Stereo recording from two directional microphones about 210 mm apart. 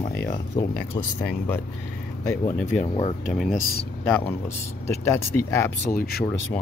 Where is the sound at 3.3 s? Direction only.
Centre (ahead or behind).